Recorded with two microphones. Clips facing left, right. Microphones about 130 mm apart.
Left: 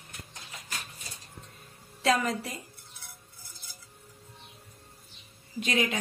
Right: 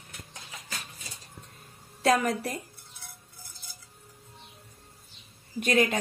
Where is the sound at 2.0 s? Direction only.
45° right (ahead or behind).